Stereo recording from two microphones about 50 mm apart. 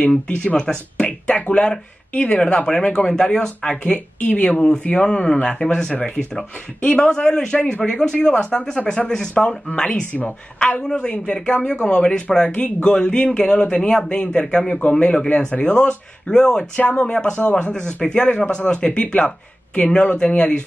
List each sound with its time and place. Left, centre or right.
0.6 s speech: centre
1.0 s speech: left
14.4 s speech: centre
14.8 s speech: left